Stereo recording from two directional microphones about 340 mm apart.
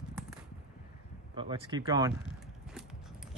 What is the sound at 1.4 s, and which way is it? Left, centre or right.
Speech, centre.